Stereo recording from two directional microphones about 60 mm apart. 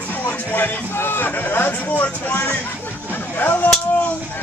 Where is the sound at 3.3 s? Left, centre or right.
Left.